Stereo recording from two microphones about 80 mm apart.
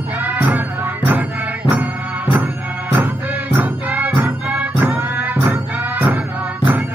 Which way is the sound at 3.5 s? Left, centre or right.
Right.